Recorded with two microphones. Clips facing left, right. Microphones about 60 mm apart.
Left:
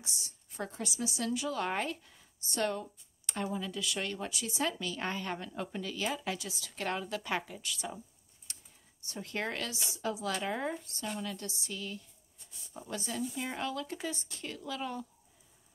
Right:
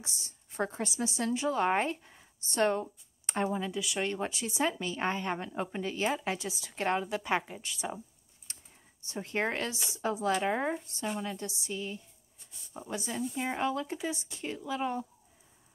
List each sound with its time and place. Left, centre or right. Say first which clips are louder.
0.0 s a woman's voice: even; right
8.5 s typing: right 1 dB; right
9.0 s a woman's voice: right 5 dB; right